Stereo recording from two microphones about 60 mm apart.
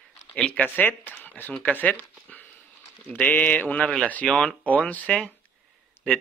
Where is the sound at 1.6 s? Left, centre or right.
Left.